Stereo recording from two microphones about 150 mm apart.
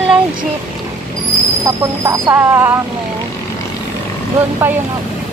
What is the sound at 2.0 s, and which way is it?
Speech, 20° right (ahead or behind).